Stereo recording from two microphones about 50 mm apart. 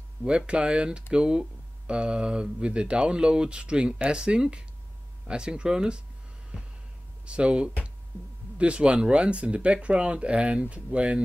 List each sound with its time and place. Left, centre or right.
0.5 s speech: right
7.2 s speech: right